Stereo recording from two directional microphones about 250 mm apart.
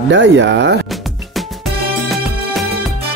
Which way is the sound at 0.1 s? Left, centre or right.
Right.